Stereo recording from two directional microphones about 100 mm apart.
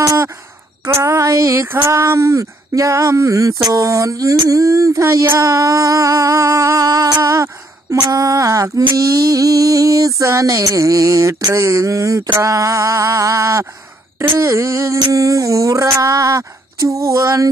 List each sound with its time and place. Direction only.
0.8 s speech: 30° right (ahead or behind)